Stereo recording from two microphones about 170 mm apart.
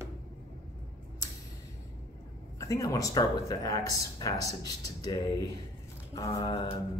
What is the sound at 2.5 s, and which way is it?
Speech, 20° left (ahead or behind).